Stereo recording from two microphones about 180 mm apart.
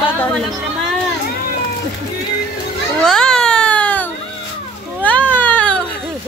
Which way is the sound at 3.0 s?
5° left (ahead or behind).